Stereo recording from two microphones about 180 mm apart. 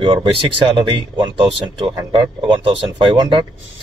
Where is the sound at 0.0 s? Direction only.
30° right (ahead or behind).